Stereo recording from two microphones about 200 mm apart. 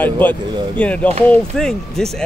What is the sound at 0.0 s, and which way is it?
Speech, 10° left (ahead or behind).